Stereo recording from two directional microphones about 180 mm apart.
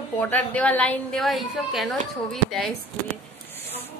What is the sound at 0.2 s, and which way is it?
A woman's voice, 10° left (ahead or behind).